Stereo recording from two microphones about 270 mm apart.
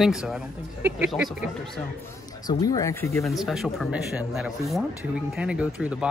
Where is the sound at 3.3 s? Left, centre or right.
Centre.